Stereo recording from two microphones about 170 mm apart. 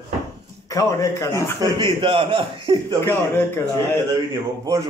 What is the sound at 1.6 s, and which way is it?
A man's voice, 30° right (ahead or behind).